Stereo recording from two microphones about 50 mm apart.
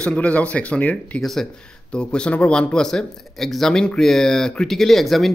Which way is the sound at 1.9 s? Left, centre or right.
Left.